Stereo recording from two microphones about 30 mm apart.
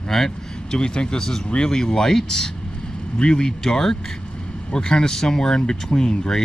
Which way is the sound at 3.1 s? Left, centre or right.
Left.